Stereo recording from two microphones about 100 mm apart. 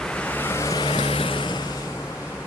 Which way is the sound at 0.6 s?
35° left (ahead or behind).